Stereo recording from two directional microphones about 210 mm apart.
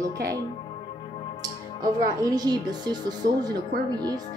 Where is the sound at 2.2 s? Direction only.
20° right (ahead or behind).